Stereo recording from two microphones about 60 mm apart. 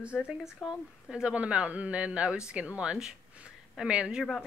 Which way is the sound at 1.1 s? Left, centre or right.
Centre.